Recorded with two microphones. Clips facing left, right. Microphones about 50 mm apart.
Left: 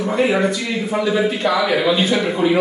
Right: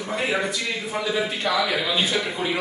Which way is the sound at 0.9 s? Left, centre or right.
Centre.